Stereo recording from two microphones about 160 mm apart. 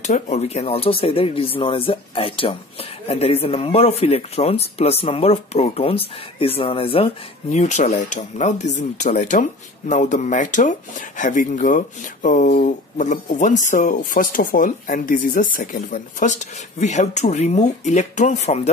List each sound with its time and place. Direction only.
0.0 s speech: 45° left (ahead or behind)